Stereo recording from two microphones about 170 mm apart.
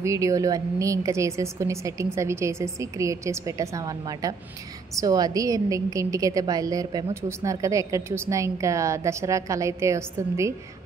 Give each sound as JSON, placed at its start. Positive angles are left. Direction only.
{"t": 0.0, "sound": "a woman's voice", "side_deg": -20}